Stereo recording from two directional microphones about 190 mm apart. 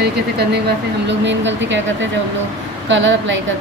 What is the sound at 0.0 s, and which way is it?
Speech, 60° right (ahead or behind).